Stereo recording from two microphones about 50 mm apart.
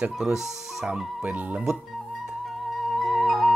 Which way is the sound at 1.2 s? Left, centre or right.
Right.